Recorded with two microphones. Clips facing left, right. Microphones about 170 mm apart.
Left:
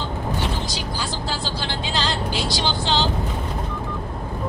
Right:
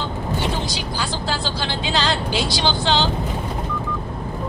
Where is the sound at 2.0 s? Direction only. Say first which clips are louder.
Right 3 dB; 70° right (ahead or behind).